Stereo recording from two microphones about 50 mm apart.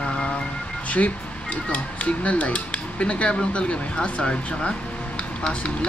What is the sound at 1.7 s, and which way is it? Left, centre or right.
Speech, left.